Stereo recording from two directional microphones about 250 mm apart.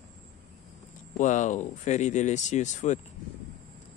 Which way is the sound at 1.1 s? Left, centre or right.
Left.